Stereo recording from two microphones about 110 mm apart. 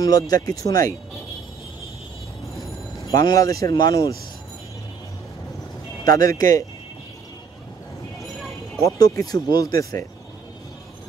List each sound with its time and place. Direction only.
0.0 s speech: 35° left (ahead or behind)
3.2 s speech: 35° left (ahead or behind)
6.0 s speech: 35° left (ahead or behind)
8.8 s speech: 30° left (ahead or behind)